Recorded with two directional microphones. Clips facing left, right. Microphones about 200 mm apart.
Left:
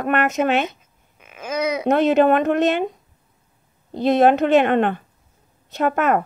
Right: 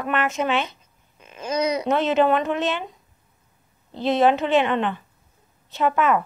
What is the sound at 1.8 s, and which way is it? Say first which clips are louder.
Speech: left 6 dB; 60° left (ahead or behind).